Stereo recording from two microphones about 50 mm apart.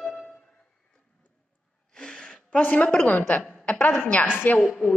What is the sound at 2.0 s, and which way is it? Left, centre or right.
Gasp, centre.